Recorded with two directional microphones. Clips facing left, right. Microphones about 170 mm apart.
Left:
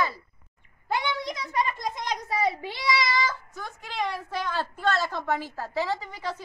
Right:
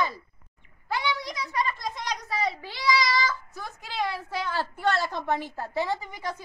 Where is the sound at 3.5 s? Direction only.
10° right (ahead or behind).